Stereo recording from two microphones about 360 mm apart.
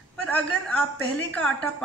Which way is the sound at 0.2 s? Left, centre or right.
Centre.